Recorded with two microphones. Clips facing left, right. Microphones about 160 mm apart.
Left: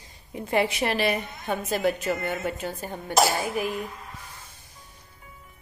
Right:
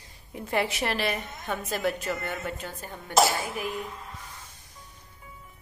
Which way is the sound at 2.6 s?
30° left (ahead or behind).